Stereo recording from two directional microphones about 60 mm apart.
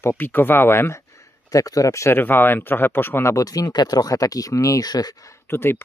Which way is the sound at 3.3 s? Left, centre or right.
Left.